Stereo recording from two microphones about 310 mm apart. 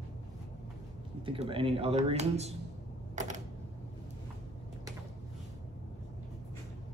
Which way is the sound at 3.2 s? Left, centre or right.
Right.